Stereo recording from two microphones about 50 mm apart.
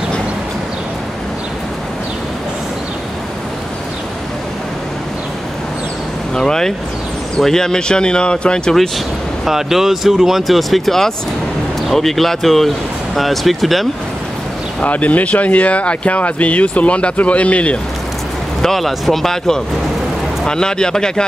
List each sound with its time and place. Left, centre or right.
6.3 s vehicle: centre
7.3 s speech: centre
8.7 s speech: centre
14.8 s speech: left
18.6 s speech: centre